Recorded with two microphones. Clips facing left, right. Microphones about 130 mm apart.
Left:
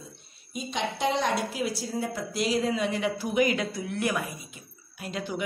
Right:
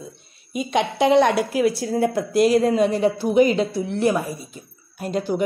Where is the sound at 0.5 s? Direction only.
65° right (ahead or behind).